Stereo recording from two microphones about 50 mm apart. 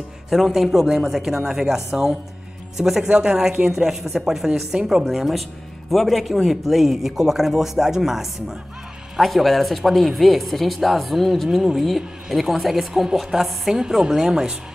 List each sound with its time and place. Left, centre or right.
0.3 s speech: centre
3.1 s a man's voice: centre